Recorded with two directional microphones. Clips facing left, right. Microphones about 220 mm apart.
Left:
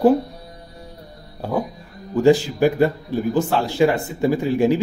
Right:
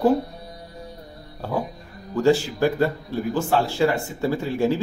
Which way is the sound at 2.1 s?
15° left (ahead or behind).